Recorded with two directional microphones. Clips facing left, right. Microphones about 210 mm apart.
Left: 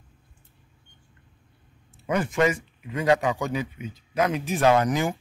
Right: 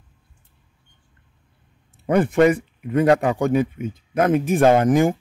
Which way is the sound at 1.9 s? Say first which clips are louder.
Right 7 dB; 60° right (ahead or behind).